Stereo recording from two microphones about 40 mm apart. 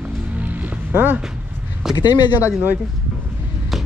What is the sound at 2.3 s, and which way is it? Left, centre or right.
Speech, right.